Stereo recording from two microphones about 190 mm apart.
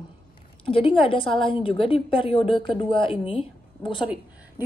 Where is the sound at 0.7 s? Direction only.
30° left (ahead or behind).